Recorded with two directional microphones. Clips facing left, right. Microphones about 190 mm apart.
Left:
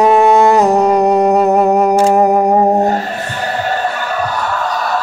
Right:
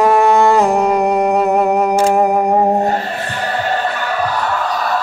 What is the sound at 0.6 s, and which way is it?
Music, 40° left (ahead or behind).